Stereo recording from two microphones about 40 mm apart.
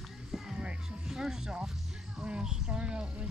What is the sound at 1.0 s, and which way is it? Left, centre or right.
Music, centre.